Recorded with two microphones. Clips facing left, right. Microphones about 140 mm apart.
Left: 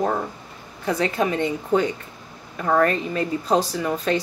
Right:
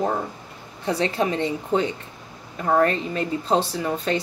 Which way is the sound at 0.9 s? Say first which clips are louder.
Left 1 dB; 30° right (ahead or behind).